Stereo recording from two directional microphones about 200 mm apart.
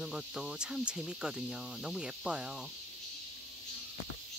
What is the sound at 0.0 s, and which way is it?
Cricket, 5° right (ahead or behind).